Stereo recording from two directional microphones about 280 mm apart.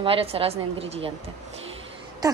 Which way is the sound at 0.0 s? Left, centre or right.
Centre.